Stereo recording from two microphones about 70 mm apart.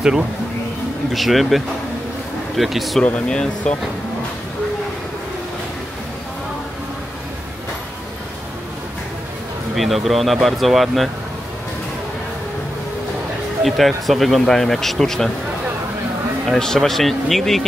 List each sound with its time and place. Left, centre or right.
1.1 s speech: centre
3.0 s speech: centre
9.8 s speech: centre
13.6 s speech: centre
16.4 s speech: centre